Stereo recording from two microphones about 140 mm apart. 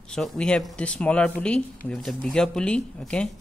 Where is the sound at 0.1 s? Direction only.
5° left (ahead or behind).